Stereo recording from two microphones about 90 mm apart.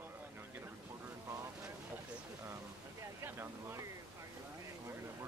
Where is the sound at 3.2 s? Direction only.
30° right (ahead or behind).